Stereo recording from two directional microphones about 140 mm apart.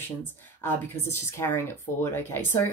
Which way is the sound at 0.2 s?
15° left (ahead or behind).